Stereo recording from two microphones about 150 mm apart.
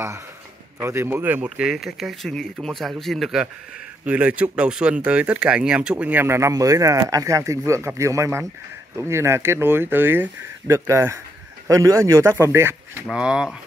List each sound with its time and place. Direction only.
0.7 s speech: 15° right (ahead or behind)
13.1 s speech: 5° right (ahead or behind)